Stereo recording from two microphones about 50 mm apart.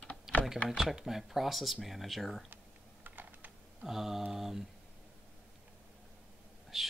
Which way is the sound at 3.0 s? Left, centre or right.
Right.